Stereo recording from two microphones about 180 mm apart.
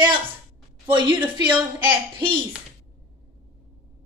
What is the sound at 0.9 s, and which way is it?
A woman's voice, 25° right (ahead or behind).